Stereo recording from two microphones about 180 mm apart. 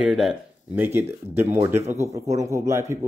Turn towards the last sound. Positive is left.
turn(degrees=-15)  # may be behind; listen again after turning